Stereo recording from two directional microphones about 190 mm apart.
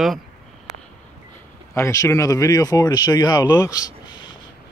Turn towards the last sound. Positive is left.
turn(degrees=25)  # may be behind; listen again after turning